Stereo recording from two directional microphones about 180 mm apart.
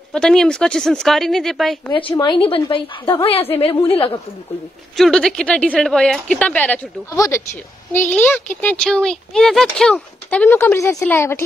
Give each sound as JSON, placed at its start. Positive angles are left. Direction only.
{"t": 0.1, "sound": "a woman's voice", "side_deg": 5}
{"t": 1.9, "sound": "a woman's voice", "side_deg": 25}
{"t": 4.9, "sound": "a woman's voice", "side_deg": 5}